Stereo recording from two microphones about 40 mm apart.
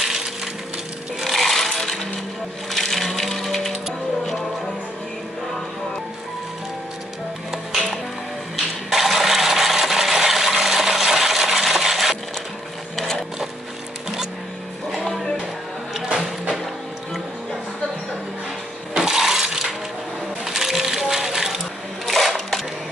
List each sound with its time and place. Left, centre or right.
1.2 s coin: centre
2.7 s music: centre
7.5 s music: centre
8.5 s coin: centre
12.9 s sewing machine: centre
16.2 s music: centre
18.9 s a sound: centre
19.4 s music: centre
22.0 s sewing machine: centre